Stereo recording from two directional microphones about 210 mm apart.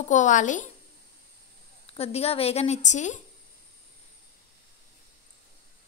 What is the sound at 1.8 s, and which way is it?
A woman's voice, 30° left (ahead or behind).